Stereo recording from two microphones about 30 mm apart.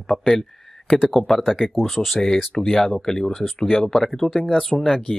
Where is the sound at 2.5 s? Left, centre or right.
Left; by 4.6 s centre.